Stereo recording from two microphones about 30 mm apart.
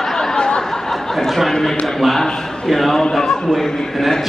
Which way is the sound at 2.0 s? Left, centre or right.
Centre.